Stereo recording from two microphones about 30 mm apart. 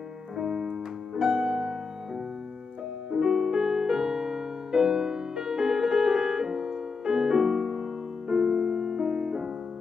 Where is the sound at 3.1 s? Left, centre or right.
Right.